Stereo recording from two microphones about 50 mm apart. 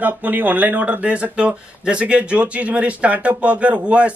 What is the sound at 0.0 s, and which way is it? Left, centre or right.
Speech, right.